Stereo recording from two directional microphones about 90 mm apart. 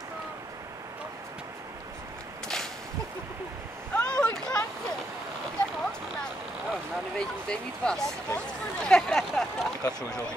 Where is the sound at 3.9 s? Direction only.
10° left (ahead or behind).